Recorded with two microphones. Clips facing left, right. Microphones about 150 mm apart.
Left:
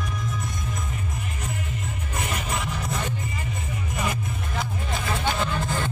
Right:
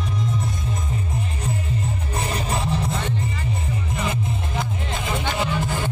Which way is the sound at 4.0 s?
25° right (ahead or behind).